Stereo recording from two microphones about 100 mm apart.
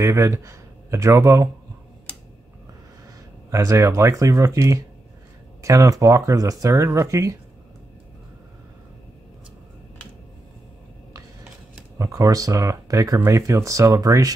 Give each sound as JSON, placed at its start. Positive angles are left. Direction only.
{"t": 0.0, "sound": "speech", "side_deg": -30}
{"t": 3.4, "sound": "speech", "side_deg": -30}
{"t": 12.0, "sound": "speech", "side_deg": -35}